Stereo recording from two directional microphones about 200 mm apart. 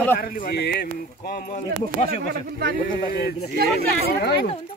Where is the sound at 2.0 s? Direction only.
50° right (ahead or behind).